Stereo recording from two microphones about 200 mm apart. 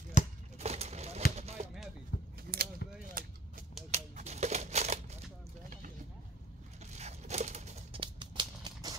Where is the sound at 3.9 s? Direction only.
35° right (ahead or behind).